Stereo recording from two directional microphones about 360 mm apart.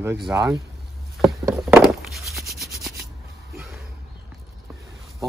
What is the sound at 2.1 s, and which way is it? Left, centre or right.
Rub, centre.